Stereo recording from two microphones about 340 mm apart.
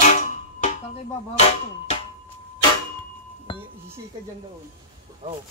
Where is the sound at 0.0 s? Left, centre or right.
Left.